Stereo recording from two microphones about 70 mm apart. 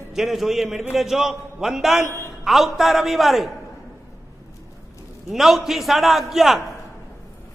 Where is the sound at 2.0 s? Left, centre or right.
Left.